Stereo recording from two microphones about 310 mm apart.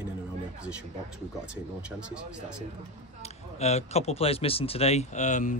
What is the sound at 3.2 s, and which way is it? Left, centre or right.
Speech, left.